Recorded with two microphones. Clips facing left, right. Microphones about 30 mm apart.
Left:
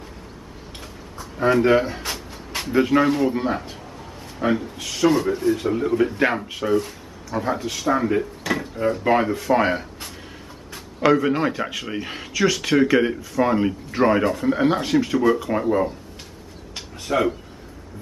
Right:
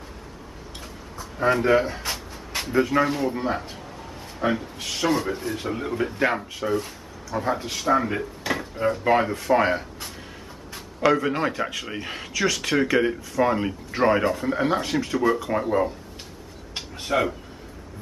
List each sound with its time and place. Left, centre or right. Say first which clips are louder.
0.7 s tick-tock: left 1 dB; centre
1.6 s speech: left 2 dB; centre
2.7 s speech: left 3 dB; centre
3.4 s a sound: left 2 dB; centre
4.4 s a man's voice: left 3 dB; centre
7.5 s speech: left 2 dB; centre
7.8 s a man's voice: left 2 dB; centre
17.1 s a man's voice: left 2 dB; centre